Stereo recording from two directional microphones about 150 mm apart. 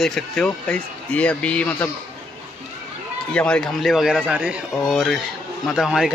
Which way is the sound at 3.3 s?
5° left (ahead or behind).